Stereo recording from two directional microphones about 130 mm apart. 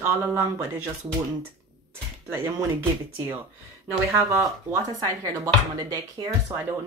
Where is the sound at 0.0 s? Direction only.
20° right (ahead or behind).